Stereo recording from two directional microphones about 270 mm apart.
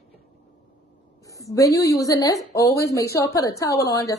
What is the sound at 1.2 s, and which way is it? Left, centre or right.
A woman's voice, centre.